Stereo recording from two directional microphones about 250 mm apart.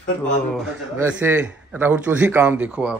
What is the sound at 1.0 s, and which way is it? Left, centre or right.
Speech, centre.